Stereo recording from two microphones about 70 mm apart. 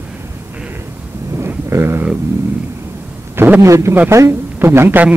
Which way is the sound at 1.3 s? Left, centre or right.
Right.